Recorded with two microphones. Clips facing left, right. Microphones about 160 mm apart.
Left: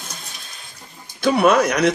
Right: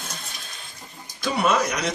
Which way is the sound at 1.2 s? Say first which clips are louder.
Left 7 dB; 60° left (ahead or behind).